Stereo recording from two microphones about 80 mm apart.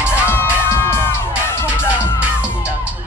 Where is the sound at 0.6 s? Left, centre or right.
Left.